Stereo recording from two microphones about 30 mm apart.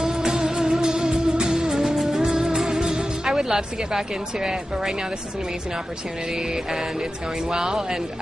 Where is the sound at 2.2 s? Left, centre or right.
Right.